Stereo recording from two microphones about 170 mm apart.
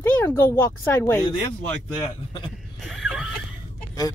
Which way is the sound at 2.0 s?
30° left (ahead or behind).